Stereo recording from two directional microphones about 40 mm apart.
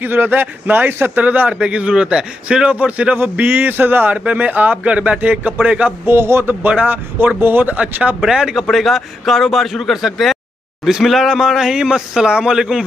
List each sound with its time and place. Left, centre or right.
0.0 s a man's voice: right
1.2 s a sound: right
1.5 s a man's voice: right
3.3 s a sound: right
4.3 s a man's voice: right
6.0 s a man's voice: right
6.7 s a man's voice: right
7.3 s a man's voice: right
7.6 s a man's voice: right
8.2 s speech: centre
8.6 s a man's voice: centre